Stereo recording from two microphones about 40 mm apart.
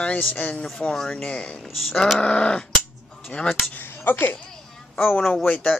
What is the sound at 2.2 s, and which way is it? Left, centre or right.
Sheep, left.